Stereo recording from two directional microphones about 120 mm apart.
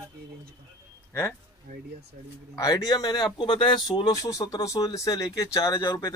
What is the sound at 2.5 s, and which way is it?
Speech, 30° left (ahead or behind).